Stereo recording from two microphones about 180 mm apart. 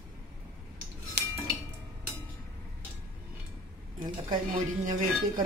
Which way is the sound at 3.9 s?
25° right (ahead or behind).